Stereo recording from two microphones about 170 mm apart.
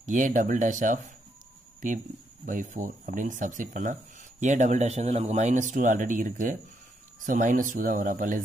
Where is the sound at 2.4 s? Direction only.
50° right (ahead or behind).